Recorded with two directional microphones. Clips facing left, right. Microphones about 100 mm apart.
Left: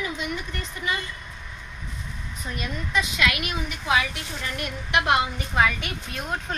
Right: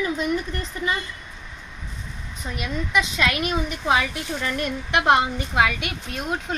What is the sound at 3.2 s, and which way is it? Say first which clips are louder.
A woman's voice: right 3 dB; 35° right (ahead or behind).